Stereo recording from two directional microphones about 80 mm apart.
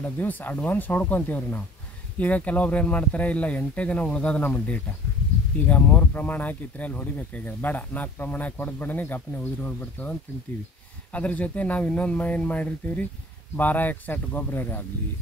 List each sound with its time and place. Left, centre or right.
0.0 s speech: left
11.1 s speech: centre